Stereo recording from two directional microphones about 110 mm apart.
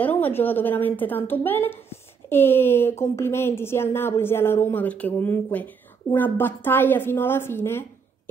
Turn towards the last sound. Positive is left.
turn(degrees=20)  # may be behind; listen again after turning